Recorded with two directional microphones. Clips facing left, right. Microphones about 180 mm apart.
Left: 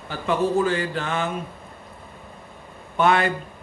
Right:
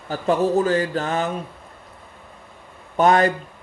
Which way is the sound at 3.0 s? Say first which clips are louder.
Right 3 dB; 40° right (ahead or behind).